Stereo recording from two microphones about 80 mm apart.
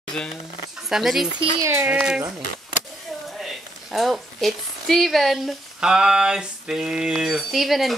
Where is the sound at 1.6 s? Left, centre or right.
Right.